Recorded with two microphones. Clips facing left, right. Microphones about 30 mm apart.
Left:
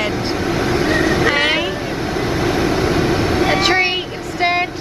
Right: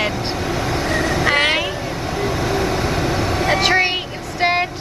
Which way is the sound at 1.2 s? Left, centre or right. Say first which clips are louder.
Left 1 dB; centre.